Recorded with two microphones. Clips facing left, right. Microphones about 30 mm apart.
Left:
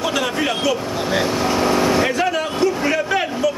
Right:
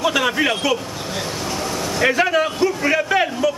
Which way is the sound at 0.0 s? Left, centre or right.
Centre.